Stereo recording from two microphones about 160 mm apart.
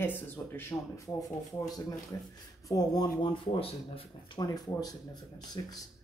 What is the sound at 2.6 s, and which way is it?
Speech, 25° left (ahead or behind).